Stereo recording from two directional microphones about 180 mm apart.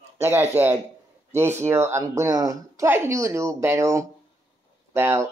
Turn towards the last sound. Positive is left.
turn(degrees=-15)  # may be behind; listen again after turning